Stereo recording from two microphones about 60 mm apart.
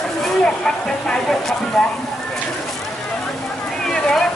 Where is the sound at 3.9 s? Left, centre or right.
Centre.